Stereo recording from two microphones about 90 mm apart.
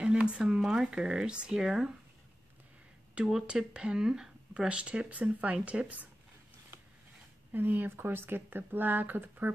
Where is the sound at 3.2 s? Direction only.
10° right (ahead or behind).